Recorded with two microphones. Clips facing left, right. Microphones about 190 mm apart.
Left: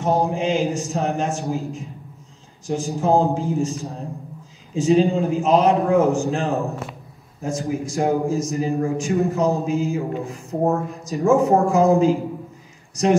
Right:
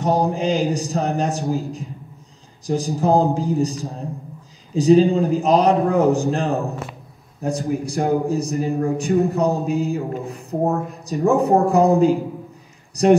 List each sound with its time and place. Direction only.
0.0 s speech: centre (ahead or behind)
2.9 s speech: centre (ahead or behind)